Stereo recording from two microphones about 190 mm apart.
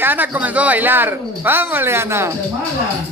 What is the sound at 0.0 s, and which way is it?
Speech, 10° right (ahead or behind).